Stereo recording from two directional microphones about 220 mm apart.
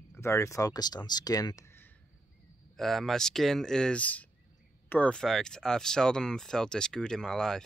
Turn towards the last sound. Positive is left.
turn(degrees=0)  # may be behind; listen again after turning